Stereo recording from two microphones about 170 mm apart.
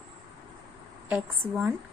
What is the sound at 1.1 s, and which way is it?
Speech, 5° right (ahead or behind).